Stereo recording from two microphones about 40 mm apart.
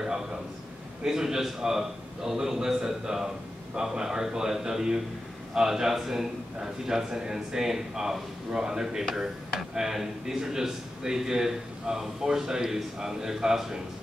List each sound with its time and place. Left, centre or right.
1.0 s speech: centre